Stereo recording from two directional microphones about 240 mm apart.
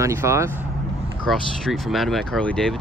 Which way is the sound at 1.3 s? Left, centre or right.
Centre.